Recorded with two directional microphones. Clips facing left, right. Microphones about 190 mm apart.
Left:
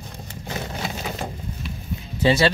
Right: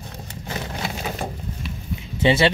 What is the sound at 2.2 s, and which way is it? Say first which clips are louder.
Speech: right 1 dB; 25° right (ahead or behind).